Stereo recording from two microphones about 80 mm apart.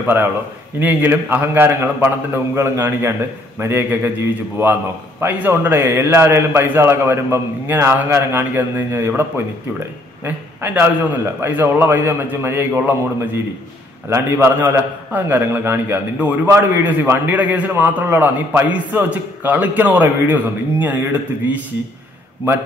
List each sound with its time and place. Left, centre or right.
0.0 s a man's voice: right
5.2 s a man's voice: right
10.2 s a man's voice: right